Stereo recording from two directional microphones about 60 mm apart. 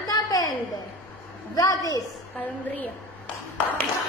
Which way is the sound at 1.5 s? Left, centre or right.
Left.